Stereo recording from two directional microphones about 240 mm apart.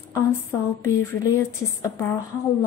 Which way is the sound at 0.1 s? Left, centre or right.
Centre.